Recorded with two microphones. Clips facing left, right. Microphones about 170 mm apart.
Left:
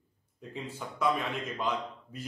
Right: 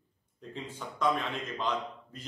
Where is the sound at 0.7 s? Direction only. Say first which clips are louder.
Even; 10° left (ahead or behind).